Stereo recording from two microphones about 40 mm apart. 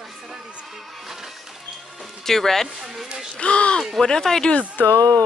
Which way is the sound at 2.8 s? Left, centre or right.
Centre.